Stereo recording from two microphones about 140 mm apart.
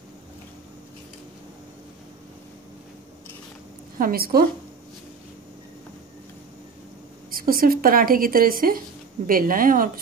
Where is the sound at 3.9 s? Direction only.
90° right.